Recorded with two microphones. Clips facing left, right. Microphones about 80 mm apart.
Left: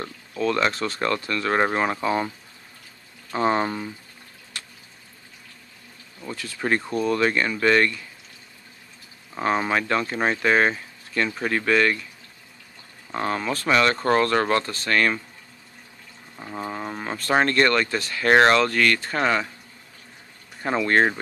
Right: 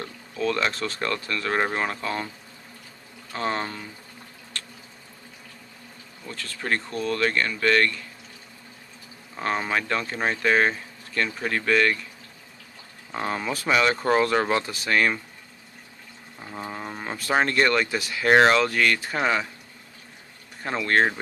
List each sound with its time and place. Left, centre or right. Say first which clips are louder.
0.0 s speech: left 2 dB; centre
3.3 s speech: left 6 dB; centre
4.6 s a sound: right 1 dB; centre
6.2 s speech: left 4 dB; centre
9.4 s speech: left 3 dB; centre
13.1 s speech: left 2 dB; centre
16.3 s speech: left 3 dB; centre
20.6 s speech: left 2 dB; centre